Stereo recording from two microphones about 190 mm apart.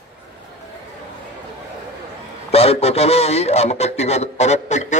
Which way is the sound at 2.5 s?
30° left (ahead or behind).